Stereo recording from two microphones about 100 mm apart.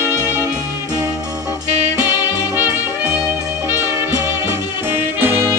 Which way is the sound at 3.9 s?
35° right (ahead or behind).